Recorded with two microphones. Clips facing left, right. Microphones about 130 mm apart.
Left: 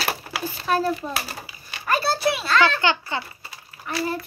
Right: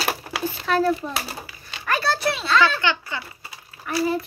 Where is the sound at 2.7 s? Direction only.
30° left (ahead or behind).